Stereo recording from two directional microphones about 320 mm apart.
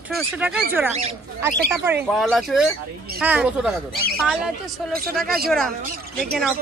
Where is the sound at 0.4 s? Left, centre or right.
Centre.